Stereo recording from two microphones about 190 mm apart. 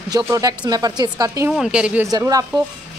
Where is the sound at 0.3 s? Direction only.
20° right (ahead or behind).